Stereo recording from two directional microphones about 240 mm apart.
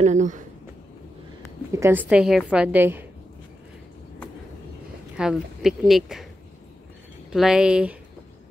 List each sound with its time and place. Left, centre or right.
0.0 s speech: right
1.7 s a woman's voice: centre
5.1 s speech: centre
7.3 s speech: centre